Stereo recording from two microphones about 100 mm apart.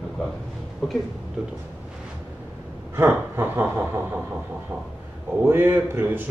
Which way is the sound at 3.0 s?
25° right (ahead or behind).